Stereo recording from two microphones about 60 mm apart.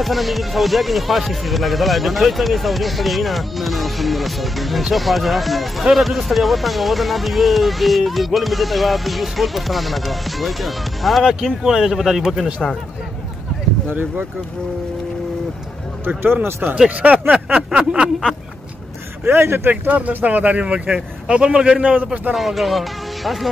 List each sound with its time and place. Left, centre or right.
0.0 s speech: centre
13.8 s speech: right
16.1 s speech: right
17.3 s speech: right
17.7 s a sound: centre
19.2 s speech: right
19.7 s speech: right
21.9 s speech: right
22.3 s speech: centre